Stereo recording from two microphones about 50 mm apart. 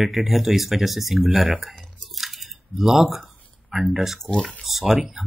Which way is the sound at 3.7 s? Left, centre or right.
Centre.